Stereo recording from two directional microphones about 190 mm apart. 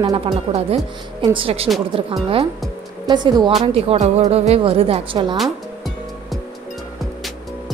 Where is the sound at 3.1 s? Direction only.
20° right (ahead or behind).